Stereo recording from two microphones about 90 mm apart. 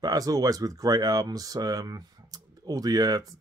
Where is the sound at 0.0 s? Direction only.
45° right (ahead or behind).